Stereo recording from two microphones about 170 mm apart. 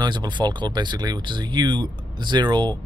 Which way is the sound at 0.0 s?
25° right (ahead or behind).